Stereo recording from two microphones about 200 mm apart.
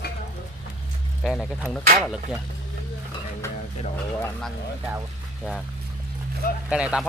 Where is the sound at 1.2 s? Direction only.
Centre (ahead or behind).